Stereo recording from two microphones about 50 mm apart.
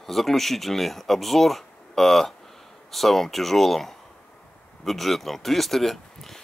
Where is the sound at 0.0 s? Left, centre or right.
Centre.